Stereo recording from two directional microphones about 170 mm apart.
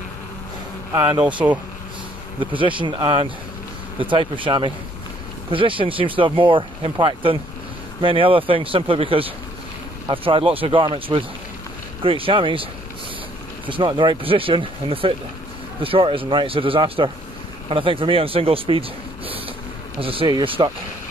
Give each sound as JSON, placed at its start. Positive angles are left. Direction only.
{"t": 0.9, "sound": "speech", "side_deg": -20}
{"t": 1.2, "sound": "speech", "side_deg": -10}
{"t": 2.4, "sound": "speech", "side_deg": -30}
{"t": 13.7, "sound": "speech", "side_deg": -30}